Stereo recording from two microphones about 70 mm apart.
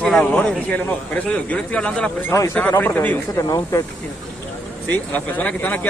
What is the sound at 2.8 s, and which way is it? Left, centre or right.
Speech, left.